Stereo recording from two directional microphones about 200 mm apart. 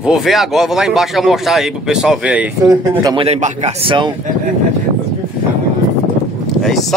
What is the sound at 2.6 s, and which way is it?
Speech, 15° right (ahead or behind).